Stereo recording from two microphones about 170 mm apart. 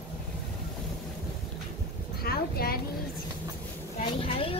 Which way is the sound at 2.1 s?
65° left (ahead or behind).